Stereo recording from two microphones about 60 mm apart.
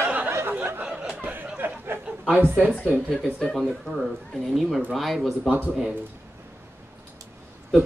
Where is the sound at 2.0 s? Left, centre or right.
Centre.